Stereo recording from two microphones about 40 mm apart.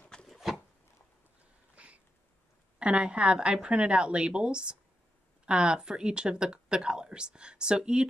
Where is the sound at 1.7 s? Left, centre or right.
Right.